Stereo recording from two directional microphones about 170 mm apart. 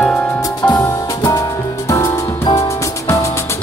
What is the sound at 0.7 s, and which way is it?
Music, 15° left (ahead or behind).